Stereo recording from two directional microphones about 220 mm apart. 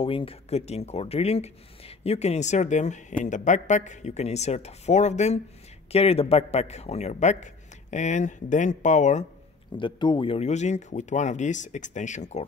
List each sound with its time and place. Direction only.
0.0 s a man's voice: 25° left (ahead or behind)
9.8 s a man's voice: 20° left (ahead or behind)